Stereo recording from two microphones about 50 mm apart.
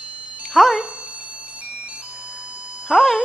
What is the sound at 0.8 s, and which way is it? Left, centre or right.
Music, right.